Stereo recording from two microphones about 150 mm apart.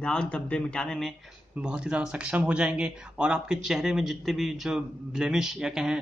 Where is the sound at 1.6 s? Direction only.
5° right (ahead or behind).